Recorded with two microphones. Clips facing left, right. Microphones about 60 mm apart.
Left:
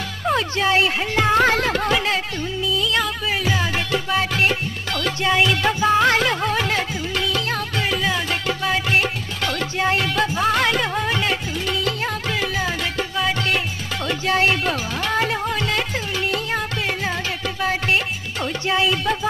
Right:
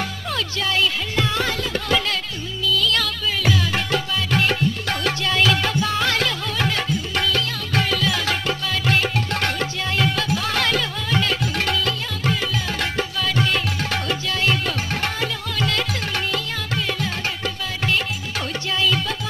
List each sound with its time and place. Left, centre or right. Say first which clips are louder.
0.3 s music: left 7 dB; left
2.7 s music: even; left
4.1 s music: left 5 dB; left
5.5 s music: left 3 dB; left
7.2 s music: left 2 dB; right
9.8 s music: left 6 dB; left
14.2 s music: left 4 dB; left
18.7 s music: left 3 dB; left